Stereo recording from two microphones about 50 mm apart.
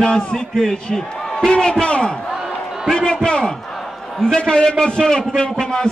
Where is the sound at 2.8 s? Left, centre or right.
Centre.